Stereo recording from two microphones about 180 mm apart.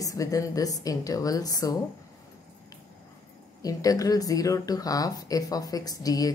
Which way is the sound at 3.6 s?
20° left (ahead or behind).